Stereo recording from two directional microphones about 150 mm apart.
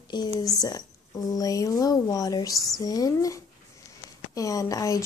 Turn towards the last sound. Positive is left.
turn(degrees=20)  # may be behind; listen again after turning